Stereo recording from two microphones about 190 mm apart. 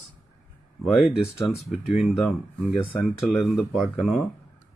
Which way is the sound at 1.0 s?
Centre (ahead or behind).